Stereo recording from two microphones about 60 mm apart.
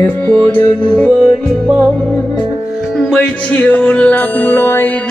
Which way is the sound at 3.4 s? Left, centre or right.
Left.